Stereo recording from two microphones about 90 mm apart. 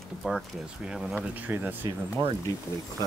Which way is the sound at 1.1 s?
20° right (ahead or behind).